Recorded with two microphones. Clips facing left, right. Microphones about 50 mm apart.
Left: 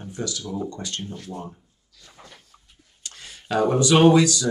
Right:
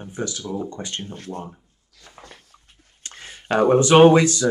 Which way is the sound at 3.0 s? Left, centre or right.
Right.